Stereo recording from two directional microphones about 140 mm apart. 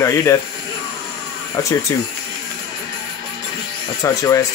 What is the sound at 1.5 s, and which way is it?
Speech, 20° left (ahead or behind).